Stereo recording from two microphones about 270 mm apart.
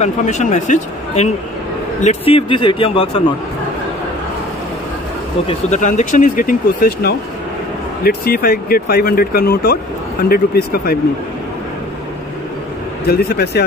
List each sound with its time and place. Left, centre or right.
0.0 s speech: left
5.5 s speech: left
13.0 s speech: left